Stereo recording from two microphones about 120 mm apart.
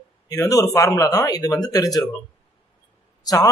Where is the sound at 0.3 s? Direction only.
30° left (ahead or behind).